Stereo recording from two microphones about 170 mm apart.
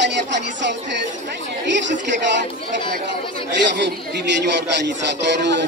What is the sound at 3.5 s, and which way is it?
A man's voice, 90° right.